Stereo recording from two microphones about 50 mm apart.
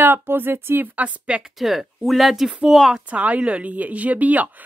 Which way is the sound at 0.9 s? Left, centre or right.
Right.